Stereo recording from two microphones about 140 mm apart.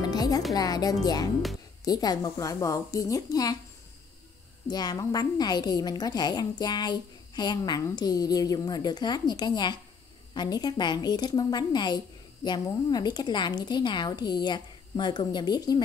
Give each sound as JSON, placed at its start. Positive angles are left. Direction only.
{"t": 0.0, "sound": "music", "side_deg": 25}
{"t": 0.6, "sound": "a woman's voice", "side_deg": 25}
{"t": 4.6, "sound": "a woman's voice", "side_deg": 30}